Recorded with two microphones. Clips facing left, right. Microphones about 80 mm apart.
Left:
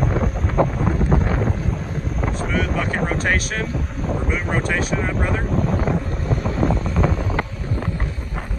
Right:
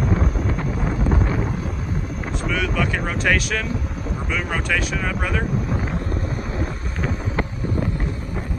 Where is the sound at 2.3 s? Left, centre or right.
Left.